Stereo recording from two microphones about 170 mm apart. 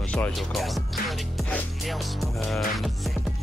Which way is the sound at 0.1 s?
5° left (ahead or behind).